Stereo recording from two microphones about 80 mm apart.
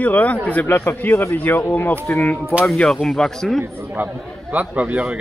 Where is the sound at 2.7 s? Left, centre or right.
Centre.